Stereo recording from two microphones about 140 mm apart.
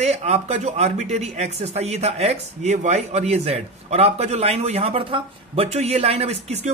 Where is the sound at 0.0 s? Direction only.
50° right (ahead or behind).